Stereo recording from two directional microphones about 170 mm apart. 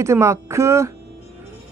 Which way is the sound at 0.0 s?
15° right (ahead or behind).